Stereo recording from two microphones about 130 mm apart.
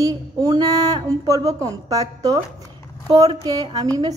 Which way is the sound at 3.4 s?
30° right (ahead or behind).